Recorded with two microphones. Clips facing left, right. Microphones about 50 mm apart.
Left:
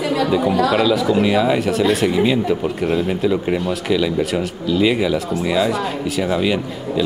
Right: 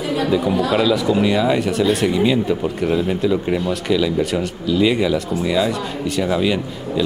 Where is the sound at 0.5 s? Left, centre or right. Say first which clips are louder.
Left 2 dB; left.